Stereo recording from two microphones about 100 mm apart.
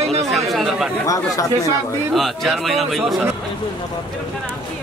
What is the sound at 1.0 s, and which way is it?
Speech, 35° left (ahead or behind).